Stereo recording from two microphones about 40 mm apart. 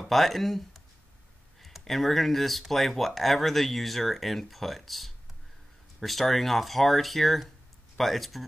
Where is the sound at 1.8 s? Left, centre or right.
Centre.